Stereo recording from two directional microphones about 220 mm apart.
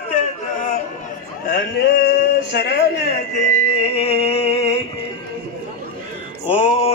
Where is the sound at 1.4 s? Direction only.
45° left (ahead or behind).